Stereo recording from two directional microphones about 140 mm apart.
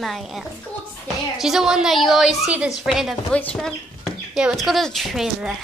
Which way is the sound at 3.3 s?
10° left (ahead or behind).